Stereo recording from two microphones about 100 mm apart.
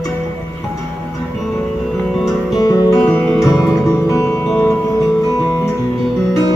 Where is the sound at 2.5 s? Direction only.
40° left (ahead or behind).